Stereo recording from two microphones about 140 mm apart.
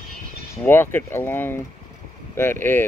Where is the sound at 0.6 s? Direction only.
15° left (ahead or behind).